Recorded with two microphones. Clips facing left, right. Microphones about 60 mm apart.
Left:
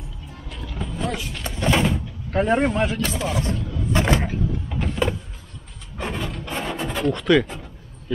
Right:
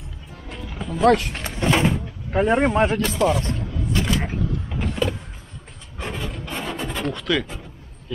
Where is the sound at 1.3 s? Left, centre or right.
Right.